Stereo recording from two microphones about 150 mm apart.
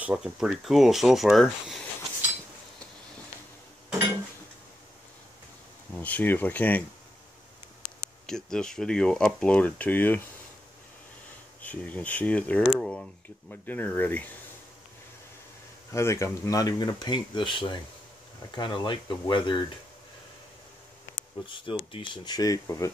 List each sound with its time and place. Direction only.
0.0 s speech: 5° right (ahead or behind)
5.9 s speech: 10° left (ahead or behind)
8.3 s speech: 5° left (ahead or behind)
11.6 s speech: 10° left (ahead or behind)
15.9 s speech: 20° left (ahead or behind)
21.7 s speech: 35° left (ahead or behind)